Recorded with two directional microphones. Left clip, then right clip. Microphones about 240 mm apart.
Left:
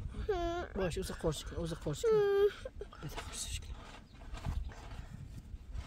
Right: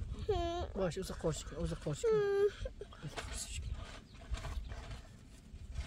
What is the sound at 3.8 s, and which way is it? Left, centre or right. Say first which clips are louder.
Horse: right 1 dB; centre.